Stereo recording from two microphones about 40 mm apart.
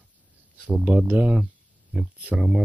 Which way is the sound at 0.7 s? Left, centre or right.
Centre.